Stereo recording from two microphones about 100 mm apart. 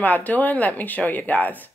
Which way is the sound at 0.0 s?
15° left (ahead or behind).